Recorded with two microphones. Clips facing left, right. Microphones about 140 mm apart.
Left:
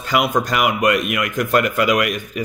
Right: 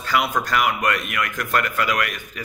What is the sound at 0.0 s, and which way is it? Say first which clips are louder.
A man's voice: left 4 dB; 20° left (ahead or behind).